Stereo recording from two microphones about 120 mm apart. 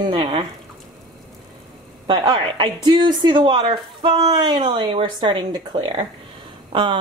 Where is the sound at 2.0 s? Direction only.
40° right (ahead or behind).